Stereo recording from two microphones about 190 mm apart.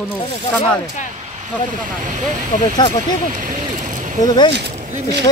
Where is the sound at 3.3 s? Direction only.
45° right (ahead or behind).